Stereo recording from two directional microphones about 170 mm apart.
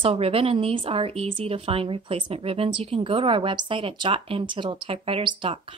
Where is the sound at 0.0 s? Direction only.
35° right (ahead or behind).